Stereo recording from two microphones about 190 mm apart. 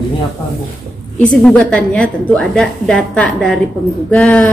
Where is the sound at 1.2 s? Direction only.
5° left (ahead or behind).